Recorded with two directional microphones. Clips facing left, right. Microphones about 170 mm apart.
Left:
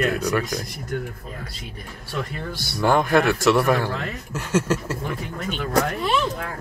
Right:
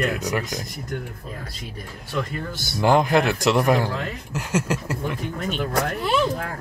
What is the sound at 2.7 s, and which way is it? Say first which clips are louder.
Speech: even; 20° right (ahead or behind).